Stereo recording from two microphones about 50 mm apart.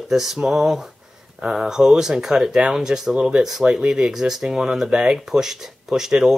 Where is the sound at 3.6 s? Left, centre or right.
Right.